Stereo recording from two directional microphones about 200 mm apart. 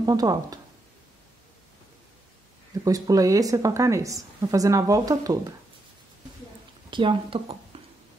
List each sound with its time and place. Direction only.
0.0 s speech: 20° right (ahead or behind)
2.7 s a woman's voice: 15° right (ahead or behind)
6.9 s speech: 25° right (ahead or behind)
7.7 s a sound: 25° right (ahead or behind)